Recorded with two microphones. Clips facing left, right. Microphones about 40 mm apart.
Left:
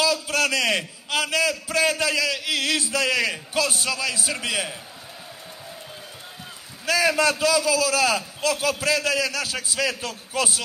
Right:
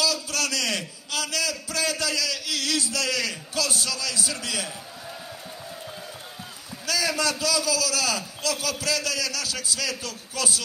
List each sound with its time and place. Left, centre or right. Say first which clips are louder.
0.0 s a man's voice: left 5 dB; left
6.9 s a man's voice: left 5 dB; left